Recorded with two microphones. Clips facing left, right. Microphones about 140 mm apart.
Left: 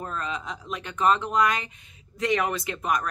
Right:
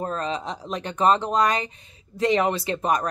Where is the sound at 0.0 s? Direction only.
35° right (ahead or behind).